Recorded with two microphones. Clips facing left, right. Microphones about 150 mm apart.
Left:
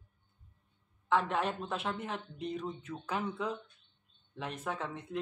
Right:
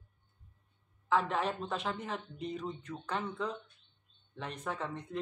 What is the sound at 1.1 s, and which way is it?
Speech, centre (ahead or behind).